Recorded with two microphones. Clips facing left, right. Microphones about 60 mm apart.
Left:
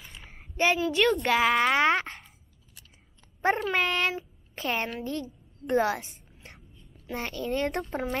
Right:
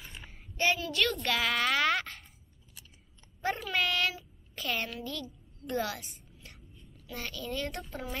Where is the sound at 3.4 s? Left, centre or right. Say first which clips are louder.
Left 6 dB; left.